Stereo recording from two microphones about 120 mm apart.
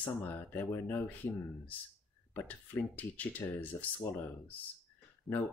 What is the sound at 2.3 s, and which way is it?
Speech, 15° left (ahead or behind).